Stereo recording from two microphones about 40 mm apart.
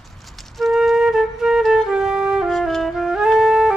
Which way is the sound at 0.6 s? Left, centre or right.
Centre.